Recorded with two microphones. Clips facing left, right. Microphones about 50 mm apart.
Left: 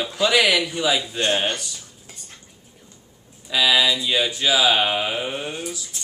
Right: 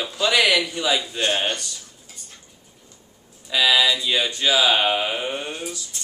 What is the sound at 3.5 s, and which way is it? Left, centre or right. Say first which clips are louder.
Speech: even; centre.